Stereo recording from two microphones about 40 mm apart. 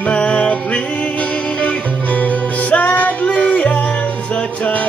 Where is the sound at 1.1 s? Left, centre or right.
Left.